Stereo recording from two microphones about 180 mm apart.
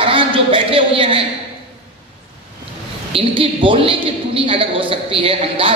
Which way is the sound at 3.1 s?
30° right (ahead or behind).